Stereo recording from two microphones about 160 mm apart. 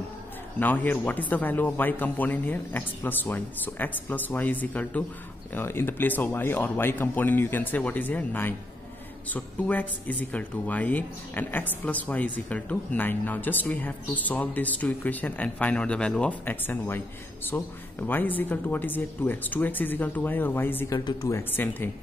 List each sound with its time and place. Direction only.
0.6 s speech: 10° left (ahead or behind)
18.0 s speech: 10° left (ahead or behind)